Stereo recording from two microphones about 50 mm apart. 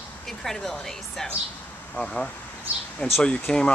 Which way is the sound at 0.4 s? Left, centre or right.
Centre.